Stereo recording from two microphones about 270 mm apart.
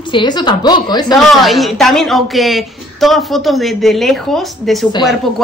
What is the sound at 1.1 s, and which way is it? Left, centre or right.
A woman's voice, centre.